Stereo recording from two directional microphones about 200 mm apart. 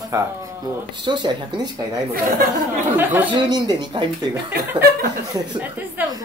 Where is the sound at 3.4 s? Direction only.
20° right (ahead or behind).